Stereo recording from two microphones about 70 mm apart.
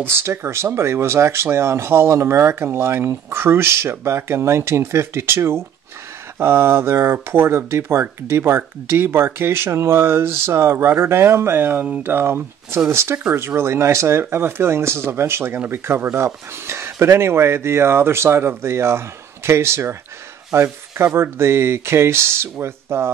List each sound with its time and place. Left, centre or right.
0.0 s speech: right